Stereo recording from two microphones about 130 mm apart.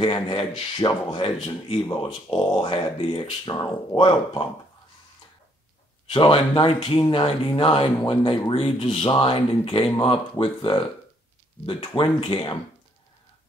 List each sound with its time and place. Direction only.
0.0 s speech: 40° left (ahead or behind)
6.1 s speech: 40° left (ahead or behind)